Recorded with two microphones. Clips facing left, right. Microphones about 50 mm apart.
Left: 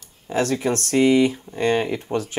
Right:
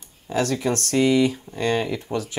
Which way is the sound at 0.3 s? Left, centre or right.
Left.